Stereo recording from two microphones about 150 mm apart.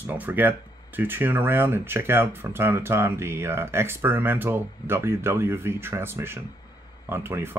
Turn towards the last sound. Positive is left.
turn(degrees=-15)  # may be behind; listen again after turning